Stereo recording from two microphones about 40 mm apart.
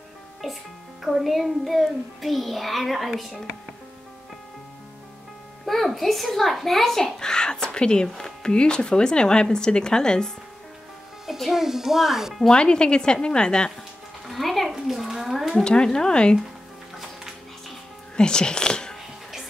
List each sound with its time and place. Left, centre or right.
1.0 s music: centre
5.7 s music: centre
6.6 s a woman's voice: centre
7.2 s speech: centre
11.5 s a child's voice: centre
12.4 s speech: left
14.2 s a sound: centre
15.6 s speech: left
17.0 s music: centre
18.1 s speech: left